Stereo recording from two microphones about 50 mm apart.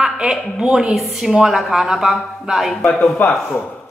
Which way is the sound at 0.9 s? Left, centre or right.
Centre.